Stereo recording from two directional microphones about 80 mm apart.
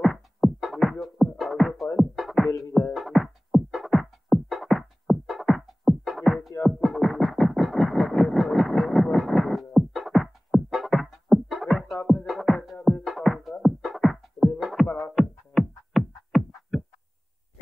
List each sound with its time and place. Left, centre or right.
0.0 s music: centre
14.9 s music: left
15.1 s music: centre